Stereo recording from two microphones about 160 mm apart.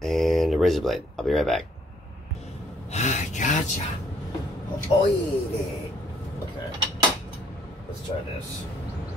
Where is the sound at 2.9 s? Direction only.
45° left (ahead or behind).